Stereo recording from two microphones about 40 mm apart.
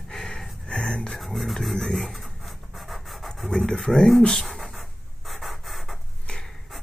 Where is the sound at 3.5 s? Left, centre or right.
Centre.